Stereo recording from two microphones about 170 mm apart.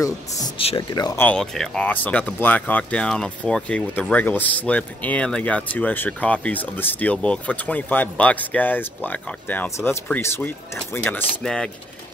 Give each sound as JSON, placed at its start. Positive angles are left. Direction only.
{"t": 0.6, "sound": "speech", "side_deg": 30}
{"t": 1.2, "sound": "speech", "side_deg": 5}